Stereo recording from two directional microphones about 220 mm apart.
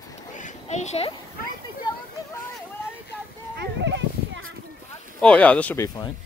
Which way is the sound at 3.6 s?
55° right (ahead or behind).